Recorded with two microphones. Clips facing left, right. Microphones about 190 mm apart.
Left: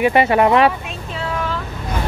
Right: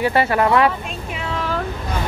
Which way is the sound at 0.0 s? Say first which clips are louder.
Left 3 dB; 20° left (ahead or behind).